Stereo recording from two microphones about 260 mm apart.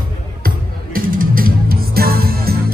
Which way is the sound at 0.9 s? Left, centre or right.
Right.